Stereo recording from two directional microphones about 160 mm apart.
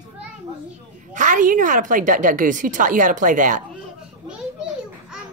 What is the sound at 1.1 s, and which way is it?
A woman's voice, 55° right (ahead or behind).